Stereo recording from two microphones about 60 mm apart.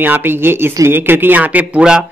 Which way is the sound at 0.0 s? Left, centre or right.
Right.